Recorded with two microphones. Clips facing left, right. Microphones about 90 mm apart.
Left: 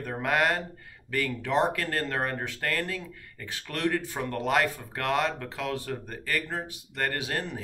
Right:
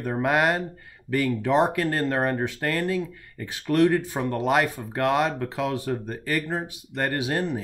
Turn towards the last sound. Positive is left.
turn(degrees=-20)  # may be behind; listen again after turning